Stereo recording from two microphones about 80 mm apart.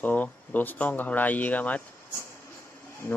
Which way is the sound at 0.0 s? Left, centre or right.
Centre.